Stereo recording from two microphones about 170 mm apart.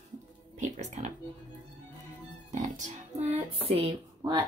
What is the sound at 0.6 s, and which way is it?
Music, 45° right (ahead or behind).